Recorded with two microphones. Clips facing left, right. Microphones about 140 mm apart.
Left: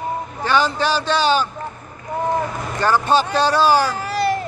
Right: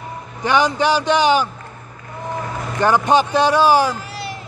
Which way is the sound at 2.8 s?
15° right (ahead or behind).